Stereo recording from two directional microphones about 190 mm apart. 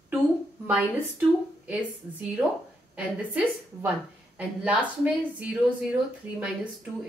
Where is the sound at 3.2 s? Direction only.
5° right (ahead or behind).